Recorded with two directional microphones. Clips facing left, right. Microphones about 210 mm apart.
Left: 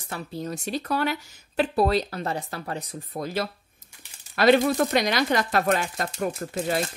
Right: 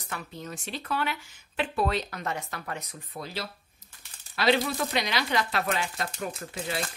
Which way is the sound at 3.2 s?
50° left (ahead or behind).